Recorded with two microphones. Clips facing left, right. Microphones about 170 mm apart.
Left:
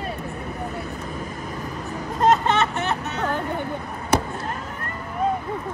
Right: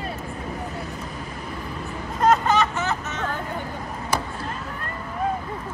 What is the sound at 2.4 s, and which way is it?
Music, 25° left (ahead or behind).